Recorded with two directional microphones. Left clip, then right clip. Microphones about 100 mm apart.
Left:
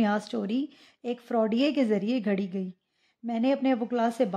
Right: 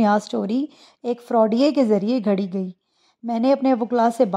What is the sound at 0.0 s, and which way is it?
Speech, 35° right (ahead or behind).